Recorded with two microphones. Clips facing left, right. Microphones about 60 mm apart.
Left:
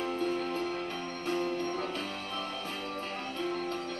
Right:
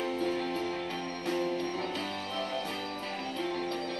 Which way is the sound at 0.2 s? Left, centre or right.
Left.